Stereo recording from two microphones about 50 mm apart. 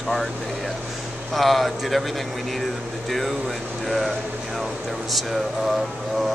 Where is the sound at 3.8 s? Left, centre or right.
Centre.